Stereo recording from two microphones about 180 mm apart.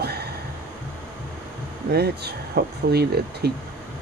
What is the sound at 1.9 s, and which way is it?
Speech, 65° right (ahead or behind).